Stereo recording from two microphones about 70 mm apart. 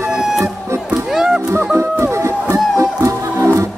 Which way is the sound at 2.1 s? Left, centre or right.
Right.